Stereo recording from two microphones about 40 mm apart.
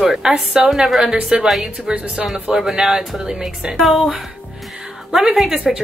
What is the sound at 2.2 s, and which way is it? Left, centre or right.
A woman's voice, centre.